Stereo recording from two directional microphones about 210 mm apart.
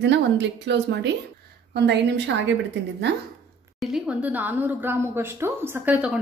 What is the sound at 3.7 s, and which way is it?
A woman's voice, centre (ahead or behind).